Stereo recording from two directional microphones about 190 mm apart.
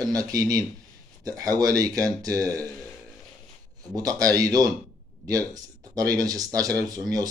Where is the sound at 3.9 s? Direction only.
20° right (ahead or behind).